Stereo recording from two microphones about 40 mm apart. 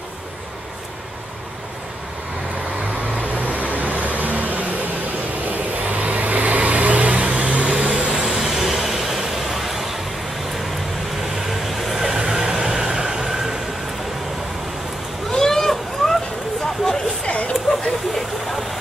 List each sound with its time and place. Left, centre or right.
3.2 s vehicle: right
8.3 s vehicle: centre
11.6 s vehicle: centre
12.2 s train: right
15.2 s vehicle: centre
17.3 s a sound: left
18.1 s vehicle: centre